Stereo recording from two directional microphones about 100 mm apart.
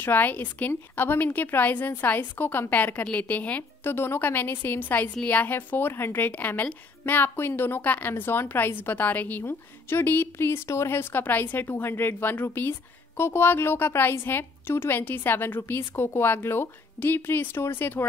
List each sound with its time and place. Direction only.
0.0 s a woman's voice: 20° left (ahead or behind)